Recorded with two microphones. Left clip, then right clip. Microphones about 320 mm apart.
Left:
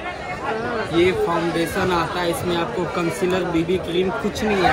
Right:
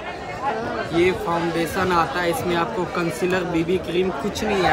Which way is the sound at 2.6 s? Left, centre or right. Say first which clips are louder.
Even; centre.